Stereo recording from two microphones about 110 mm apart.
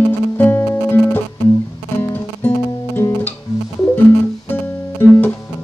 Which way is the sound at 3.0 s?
20° left (ahead or behind).